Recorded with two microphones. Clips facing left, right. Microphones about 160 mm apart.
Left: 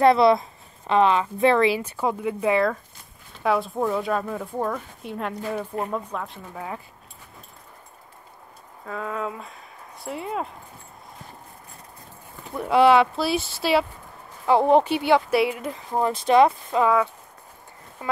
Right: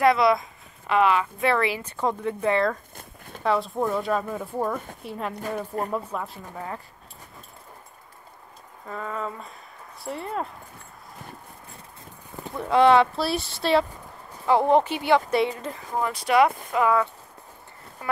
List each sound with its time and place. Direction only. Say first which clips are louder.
0.0 s speech: left 3 dB; 30° left (ahead or behind); by 2.8 s 5° left (ahead or behind)
3.0 s a sound: right 6 dB; 55° right (ahead or behind)
3.4 s speech: left 1 dB; centre (ahead or behind)
8.8 s speech: left 2 dB; centre (ahead or behind)
12.5 s speech: left 1 dB; 10° left (ahead or behind)
14.4 s speech: left 2 dB; 15° left (ahead or behind)
15.3 s speech: left 2 dB; 5° left (ahead or behind)
15.7 s speech: left 4 dB; 25° left (ahead or behind)